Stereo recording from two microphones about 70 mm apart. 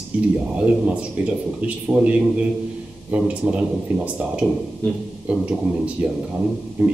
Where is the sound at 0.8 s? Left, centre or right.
Centre.